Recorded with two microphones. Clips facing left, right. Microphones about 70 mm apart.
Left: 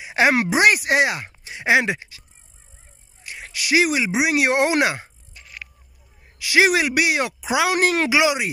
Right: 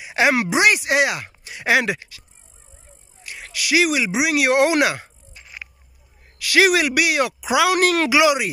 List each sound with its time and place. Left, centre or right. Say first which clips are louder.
0.0 s speech: even; left
3.3 s speech: even; left
5.3 s a sound: right 1 dB; centre
6.3 s speech: right 1 dB; centre